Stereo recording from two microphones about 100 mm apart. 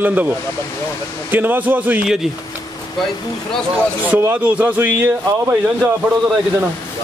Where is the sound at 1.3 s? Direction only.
20° right (ahead or behind).